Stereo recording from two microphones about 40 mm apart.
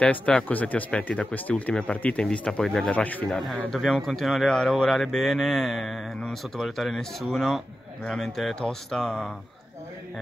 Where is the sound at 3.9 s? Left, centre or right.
Centre.